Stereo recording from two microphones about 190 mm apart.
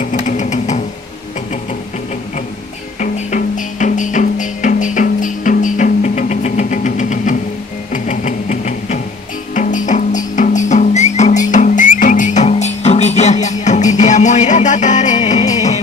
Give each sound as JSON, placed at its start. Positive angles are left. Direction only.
{"t": 0.0, "sound": "vehicle", "side_deg": 40}
{"t": 3.0, "sound": "music", "side_deg": 40}
{"t": 7.9, "sound": "a sound", "side_deg": 40}
{"t": 9.6, "sound": "music", "side_deg": 40}